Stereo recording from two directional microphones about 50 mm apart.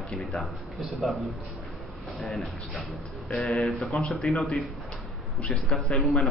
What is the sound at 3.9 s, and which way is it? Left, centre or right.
Speech, centre.